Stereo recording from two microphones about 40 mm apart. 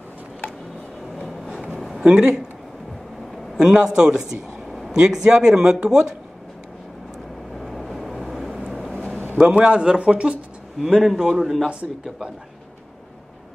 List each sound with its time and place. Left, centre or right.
1.1 s train: centre
1.8 s a sound: centre
2.0 s speech: right
3.5 s a man's voice: centre
7.5 s vehicle: centre
9.4 s a man's voice: right
9.8 s speech: right
10.8 s speech: centre